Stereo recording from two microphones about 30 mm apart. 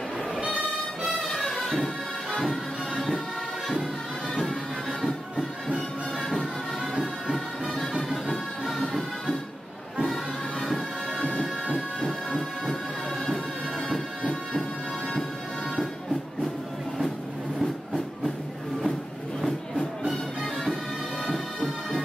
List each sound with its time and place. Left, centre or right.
1.3 s music: centre
1.6 s music: centre
7.0 s music: centre
10.6 s music: centre
17.6 s train: centre